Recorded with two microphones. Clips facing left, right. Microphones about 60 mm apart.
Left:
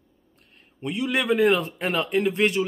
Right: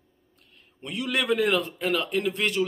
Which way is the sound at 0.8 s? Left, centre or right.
Centre.